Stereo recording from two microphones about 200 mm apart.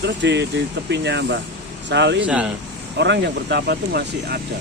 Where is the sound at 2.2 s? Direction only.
5° right (ahead or behind).